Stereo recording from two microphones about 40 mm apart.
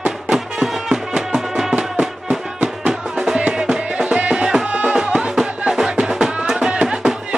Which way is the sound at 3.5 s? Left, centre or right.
Right.